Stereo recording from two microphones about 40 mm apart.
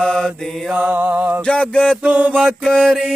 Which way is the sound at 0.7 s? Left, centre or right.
Right.